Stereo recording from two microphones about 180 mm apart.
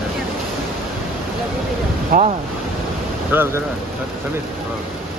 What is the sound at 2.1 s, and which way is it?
Speech, 55° right (ahead or behind).